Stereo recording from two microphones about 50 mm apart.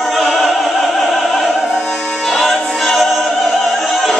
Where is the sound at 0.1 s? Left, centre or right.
Centre.